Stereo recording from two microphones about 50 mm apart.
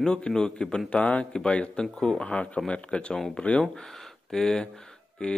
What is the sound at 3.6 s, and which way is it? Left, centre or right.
Speech, centre.